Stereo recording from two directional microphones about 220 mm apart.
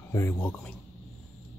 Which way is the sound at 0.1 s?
15° left (ahead or behind).